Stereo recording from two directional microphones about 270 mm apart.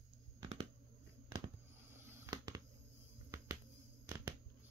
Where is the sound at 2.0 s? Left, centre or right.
Centre.